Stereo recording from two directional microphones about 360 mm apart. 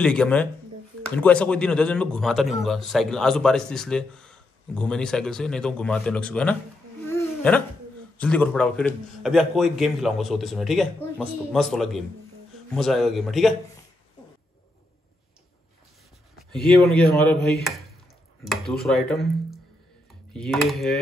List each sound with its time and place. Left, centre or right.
0.0 s speech: centre
7.1 s hiccup: centre
8.2 s speech: centre
16.5 s speech: centre
18.4 s speech: centre
20.3 s speech: centre